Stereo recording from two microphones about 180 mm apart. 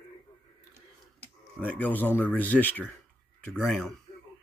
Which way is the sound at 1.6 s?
10° left (ahead or behind).